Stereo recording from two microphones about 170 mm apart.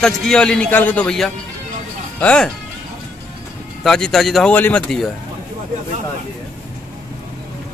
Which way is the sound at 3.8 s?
5° left (ahead or behind).